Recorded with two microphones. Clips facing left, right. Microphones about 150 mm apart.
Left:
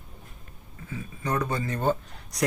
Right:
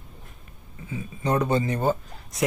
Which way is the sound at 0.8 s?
20° right (ahead or behind).